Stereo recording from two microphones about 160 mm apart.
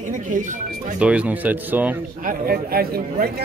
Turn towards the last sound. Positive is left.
turn(degrees=-70)  # may be behind; listen again after turning